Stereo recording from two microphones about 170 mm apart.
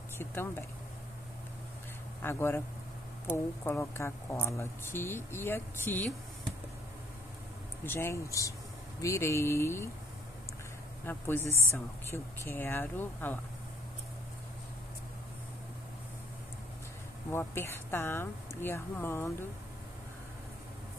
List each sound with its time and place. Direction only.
0.2 s speech: 15° left (ahead or behind)
2.2 s speech: 15° left (ahead or behind)
3.6 s speech: 15° left (ahead or behind)
7.8 s speech: 15° left (ahead or behind)
11.1 s speech: 15° left (ahead or behind)
17.3 s speech: 15° left (ahead or behind)